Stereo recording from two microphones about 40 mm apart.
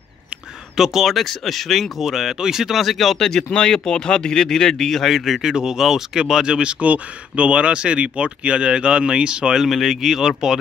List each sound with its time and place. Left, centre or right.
0.7 s speech: centre
3.2 s speech: centre
5.4 s speech: centre
6.8 s speech: right
9.6 s speech: centre